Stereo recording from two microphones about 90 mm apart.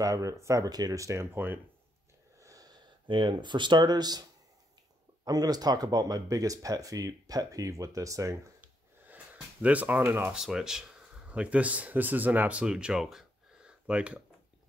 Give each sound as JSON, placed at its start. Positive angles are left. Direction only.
{"t": 0.0, "sound": "speech", "side_deg": -40}
{"t": 2.3, "sound": "wheeze", "side_deg": -40}
{"t": 3.1, "sound": "speech", "side_deg": -65}
{"t": 9.0, "sound": "speech", "side_deg": -15}
{"t": 10.3, "sound": "speech", "side_deg": -5}